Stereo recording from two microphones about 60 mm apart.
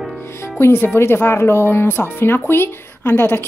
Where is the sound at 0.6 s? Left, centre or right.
Left.